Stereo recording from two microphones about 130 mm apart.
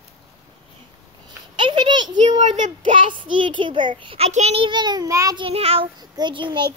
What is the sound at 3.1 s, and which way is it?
A child's voice, 40° right (ahead or behind).